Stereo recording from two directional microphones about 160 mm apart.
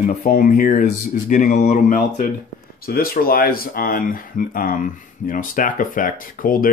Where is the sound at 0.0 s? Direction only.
55° left (ahead or behind).